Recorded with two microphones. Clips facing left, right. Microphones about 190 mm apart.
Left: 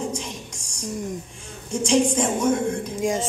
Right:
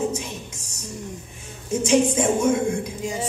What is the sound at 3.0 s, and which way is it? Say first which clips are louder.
Music: left 4 dB; 90° left.